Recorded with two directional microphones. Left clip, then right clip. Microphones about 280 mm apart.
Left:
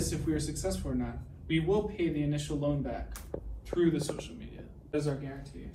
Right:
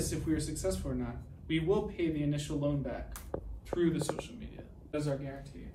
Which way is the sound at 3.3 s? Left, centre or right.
Left.